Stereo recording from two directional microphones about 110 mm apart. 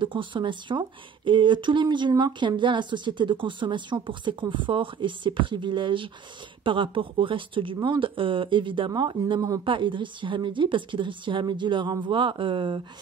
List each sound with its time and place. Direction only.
0.0 s speech: 50° right (ahead or behind); by 9.6 s 30° right (ahead or behind)
9.7 s speech: 50° right (ahead or behind)